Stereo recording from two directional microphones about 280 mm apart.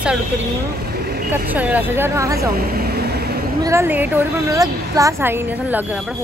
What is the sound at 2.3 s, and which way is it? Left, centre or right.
Vehicle, right.